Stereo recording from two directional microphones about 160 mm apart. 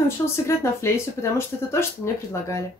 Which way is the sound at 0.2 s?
20° left (ahead or behind).